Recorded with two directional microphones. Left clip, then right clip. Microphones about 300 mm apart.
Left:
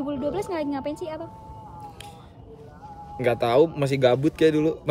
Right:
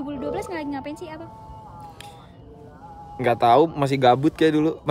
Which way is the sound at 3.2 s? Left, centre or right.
Centre.